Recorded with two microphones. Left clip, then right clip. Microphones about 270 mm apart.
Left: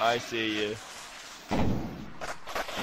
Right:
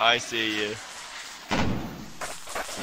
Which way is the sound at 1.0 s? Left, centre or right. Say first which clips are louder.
Right 5 dB; right.